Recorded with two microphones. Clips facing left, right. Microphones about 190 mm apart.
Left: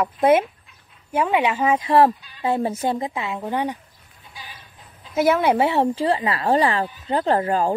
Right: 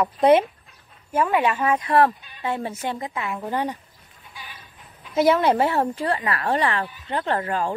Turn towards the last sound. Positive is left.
turn(degrees=35)  # may be behind; listen again after turning